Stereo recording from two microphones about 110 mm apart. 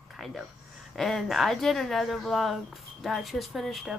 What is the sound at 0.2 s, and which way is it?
Speech, centre (ahead or behind).